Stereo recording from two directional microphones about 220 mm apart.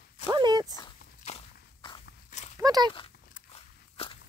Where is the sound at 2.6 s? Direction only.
15° right (ahead or behind).